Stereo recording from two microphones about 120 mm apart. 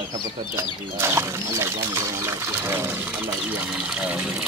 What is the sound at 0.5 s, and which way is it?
Speech, 20° right (ahead or behind).